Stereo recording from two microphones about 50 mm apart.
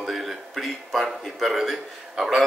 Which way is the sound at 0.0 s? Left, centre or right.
Centre.